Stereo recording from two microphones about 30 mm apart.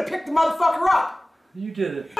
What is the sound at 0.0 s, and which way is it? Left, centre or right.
Speech, centre.